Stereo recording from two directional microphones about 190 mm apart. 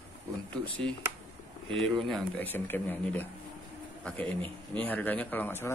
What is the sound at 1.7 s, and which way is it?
Speech, centre (ahead or behind).